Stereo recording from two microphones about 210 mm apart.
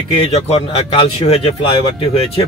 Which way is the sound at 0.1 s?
25° left (ahead or behind).